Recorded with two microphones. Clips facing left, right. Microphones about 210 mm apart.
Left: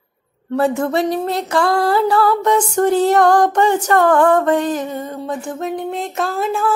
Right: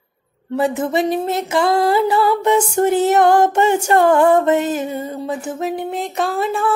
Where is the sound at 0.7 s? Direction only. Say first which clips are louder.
Even; 20° right (ahead or behind).